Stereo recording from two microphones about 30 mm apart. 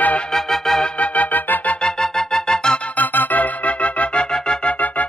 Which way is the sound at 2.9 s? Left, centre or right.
Left.